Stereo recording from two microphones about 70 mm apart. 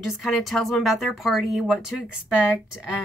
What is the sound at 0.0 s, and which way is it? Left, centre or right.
Speech, centre.